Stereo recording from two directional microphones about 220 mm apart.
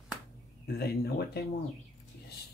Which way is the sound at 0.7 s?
45° left (ahead or behind).